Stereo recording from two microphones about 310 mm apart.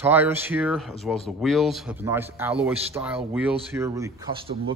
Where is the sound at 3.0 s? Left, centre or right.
Centre.